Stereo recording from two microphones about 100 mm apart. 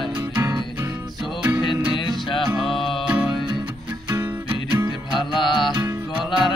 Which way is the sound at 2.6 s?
Centre (ahead or behind).